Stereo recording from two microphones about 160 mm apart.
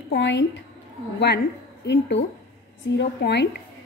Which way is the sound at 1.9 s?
90° left.